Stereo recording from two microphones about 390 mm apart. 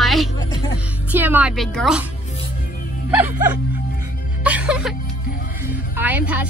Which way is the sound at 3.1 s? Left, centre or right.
Centre.